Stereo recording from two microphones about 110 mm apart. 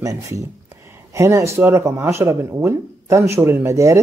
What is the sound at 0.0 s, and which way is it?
Speech, 30° right (ahead or behind).